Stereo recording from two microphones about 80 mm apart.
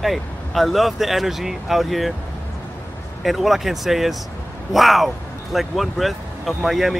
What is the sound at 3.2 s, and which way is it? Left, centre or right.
Speech, centre.